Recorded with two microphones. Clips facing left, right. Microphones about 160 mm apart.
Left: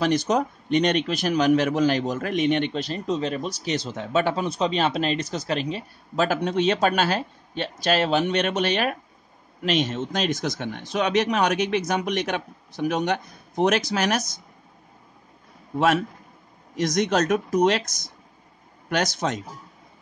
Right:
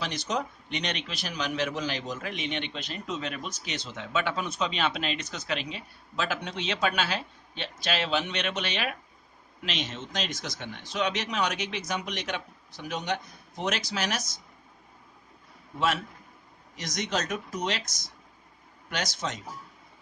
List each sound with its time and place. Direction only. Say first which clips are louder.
0.0 s a man's voice: left 10 dB; 50° left (ahead or behind)
16.7 s a man's voice: left 10 dB; 55° left (ahead or behind)
18.9 s a man's voice: left 8 dB; 55° left (ahead or behind)